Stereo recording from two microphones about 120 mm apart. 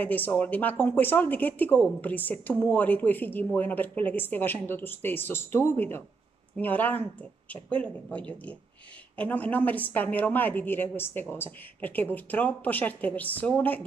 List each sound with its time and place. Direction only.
0.0 s speech: 15° left (ahead or behind)